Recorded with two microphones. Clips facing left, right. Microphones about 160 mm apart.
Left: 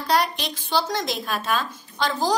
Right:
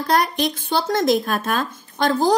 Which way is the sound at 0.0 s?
50° right (ahead or behind).